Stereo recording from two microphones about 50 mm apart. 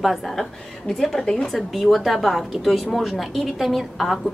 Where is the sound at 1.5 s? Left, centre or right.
Centre.